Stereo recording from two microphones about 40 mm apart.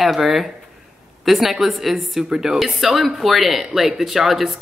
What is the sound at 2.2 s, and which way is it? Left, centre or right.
Speech, centre.